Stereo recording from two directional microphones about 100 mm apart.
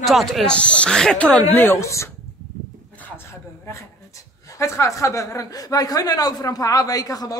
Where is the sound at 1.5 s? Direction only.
20° left (ahead or behind).